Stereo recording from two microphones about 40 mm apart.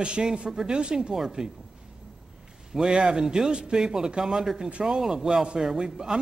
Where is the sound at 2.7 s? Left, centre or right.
Centre.